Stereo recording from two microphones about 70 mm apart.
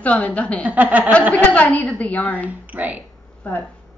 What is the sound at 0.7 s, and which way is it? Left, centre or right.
Speech, right.